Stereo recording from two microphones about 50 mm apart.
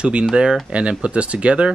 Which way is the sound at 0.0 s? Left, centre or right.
Right.